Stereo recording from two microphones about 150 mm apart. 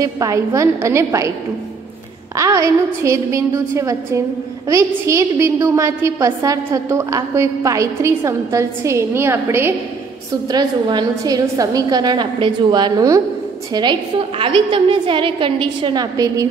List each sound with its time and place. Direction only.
0.0 s a woman's voice: 20° right (ahead or behind)
2.3 s a woman's voice: 20° right (ahead or behind)
10.5 s a woman's voice: 30° right (ahead or behind)